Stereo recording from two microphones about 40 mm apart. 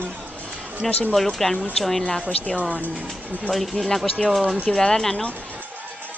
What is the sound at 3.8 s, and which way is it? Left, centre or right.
Speech, centre.